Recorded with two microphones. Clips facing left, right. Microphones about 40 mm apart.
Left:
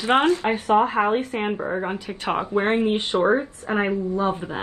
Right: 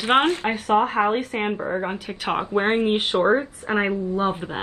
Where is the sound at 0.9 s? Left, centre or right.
Centre.